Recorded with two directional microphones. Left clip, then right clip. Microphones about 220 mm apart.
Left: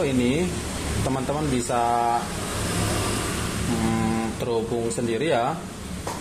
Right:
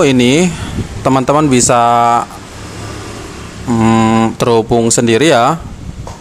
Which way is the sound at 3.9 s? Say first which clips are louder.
Right 15 dB; 40° right (ahead or behind).